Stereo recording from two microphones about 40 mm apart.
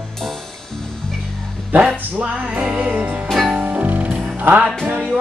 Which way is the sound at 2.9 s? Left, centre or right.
Right.